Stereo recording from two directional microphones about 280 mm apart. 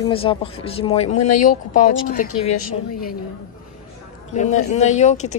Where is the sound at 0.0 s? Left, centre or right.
Centre.